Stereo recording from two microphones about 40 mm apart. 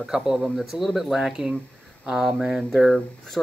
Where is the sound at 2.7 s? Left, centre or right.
Centre.